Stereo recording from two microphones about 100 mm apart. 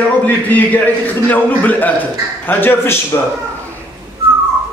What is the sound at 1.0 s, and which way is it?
A man's voice, 15° left (ahead or behind).